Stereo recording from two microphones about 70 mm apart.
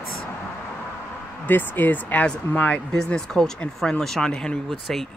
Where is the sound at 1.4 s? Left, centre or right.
Left.